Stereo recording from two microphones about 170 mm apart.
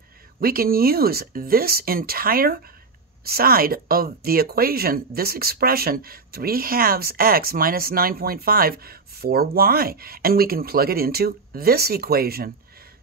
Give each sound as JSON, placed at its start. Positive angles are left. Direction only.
{"t": 0.4, "sound": "speech", "side_deg": -60}